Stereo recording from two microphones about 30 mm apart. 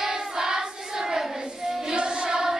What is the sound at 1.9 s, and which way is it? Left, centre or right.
Music, right.